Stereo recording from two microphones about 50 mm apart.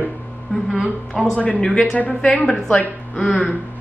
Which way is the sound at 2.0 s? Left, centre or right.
Left.